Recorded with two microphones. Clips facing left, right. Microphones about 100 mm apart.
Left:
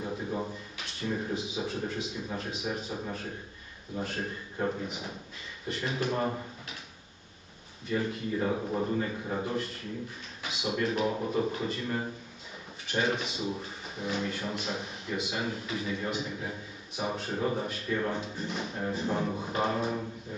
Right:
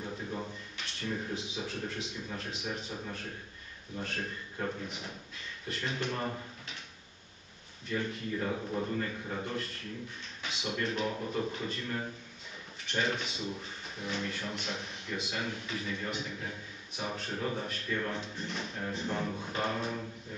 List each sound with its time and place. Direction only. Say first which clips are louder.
0.0 s drawer open or close: left 5 dB; 10° left (ahead or behind)
0.7 s a man's voice: left 3 dB; 5° left (ahead or behind)
4.0 s a man's voice: left 3 dB; 5° left (ahead or behind)
4.6 s a man's voice: left 5 dB; 20° left (ahead or behind)
4.8 s a man's voice: left 4 dB; 5° left (ahead or behind)
6.1 s speech: left 5 dB; 20° left (ahead or behind)
7.9 s a man's voice: left 4 dB; 15° left (ahead or behind)
12.8 s a man's voice: left 3 dB; 5° left (ahead or behind)
18.2 s a man's voice: left 4 dB; 5° left (ahead or behind)